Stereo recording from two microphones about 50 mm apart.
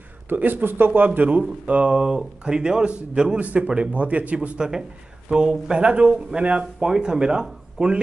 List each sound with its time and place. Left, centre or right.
0.3 s speech: right
1.7 s a man's voice: right
4.6 s a man's voice: centre